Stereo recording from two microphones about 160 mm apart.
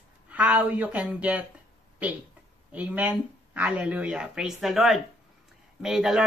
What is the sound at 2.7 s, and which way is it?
Speech, 10° right (ahead or behind).